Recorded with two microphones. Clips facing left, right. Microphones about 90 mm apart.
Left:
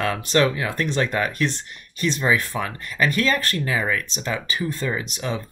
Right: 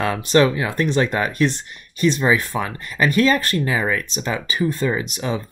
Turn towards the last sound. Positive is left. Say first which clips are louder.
# right 4 dB
turn(degrees=-20)  # may be behind; listen again after turning